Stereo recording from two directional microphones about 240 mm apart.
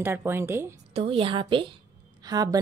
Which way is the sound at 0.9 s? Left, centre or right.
Right.